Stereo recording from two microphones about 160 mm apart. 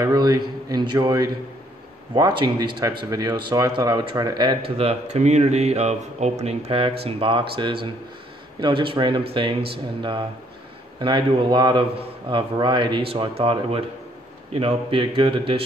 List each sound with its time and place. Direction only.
0.0 s a man's voice: 25° right (ahead or behind)
11.0 s a man's voice: 30° right (ahead or behind)